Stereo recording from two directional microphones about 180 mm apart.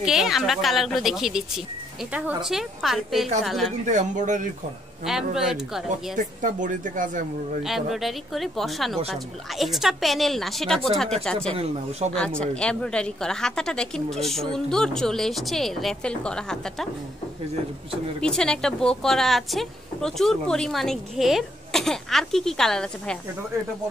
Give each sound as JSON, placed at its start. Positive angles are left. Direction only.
{"t": 0.0, "sound": "a woman's voice", "side_deg": 0}
{"t": 3.8, "sound": "speech", "side_deg": -40}
{"t": 5.0, "sound": "a woman's voice", "side_deg": 0}
{"t": 6.1, "sound": "speech", "side_deg": -45}
{"t": 7.6, "sound": "a woman's voice", "side_deg": 0}
{"t": 12.0, "sound": "speech", "side_deg": -35}
{"t": 12.4, "sound": "a woman's voice", "side_deg": 5}
{"t": 18.2, "sound": "a woman's voice", "side_deg": 5}